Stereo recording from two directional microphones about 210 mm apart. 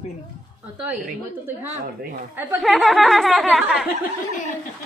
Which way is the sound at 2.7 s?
Centre (ahead or behind).